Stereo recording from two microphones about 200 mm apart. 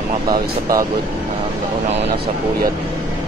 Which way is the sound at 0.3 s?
15° right (ahead or behind).